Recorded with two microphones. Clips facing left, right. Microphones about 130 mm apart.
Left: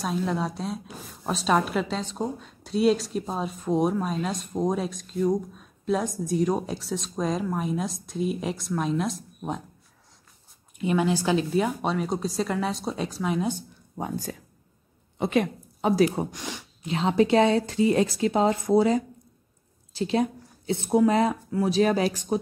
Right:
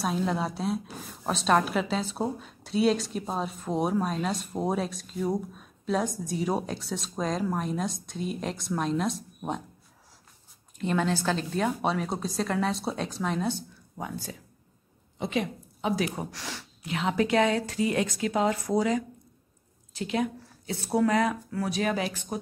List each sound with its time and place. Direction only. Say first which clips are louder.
0.0 s a woman's voice: left 1 dB; centre (ahead or behind)
10.8 s a woman's voice: left 3 dB; 10° left (ahead or behind)
15.1 s a woman's voice: left 5 dB; 55° left (ahead or behind)
15.8 s speech: left 7 dB; 35° left (ahead or behind)
16.3 s speech: left 3 dB; 20° left (ahead or behind)
16.9 s speech: left 4 dB; 30° left (ahead or behind)